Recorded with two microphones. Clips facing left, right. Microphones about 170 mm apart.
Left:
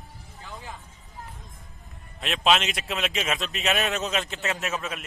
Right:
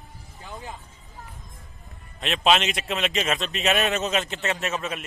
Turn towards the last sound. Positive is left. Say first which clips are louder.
# right 2 dB
turn(degrees=0)  # may be behind; listen again after turning